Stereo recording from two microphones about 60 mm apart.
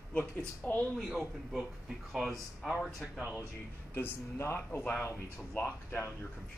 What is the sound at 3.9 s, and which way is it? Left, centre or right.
Speech, left.